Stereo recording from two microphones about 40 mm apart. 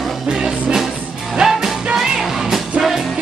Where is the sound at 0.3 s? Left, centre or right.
Right.